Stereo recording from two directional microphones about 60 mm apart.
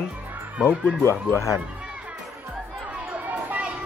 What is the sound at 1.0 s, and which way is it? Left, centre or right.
Speech, left.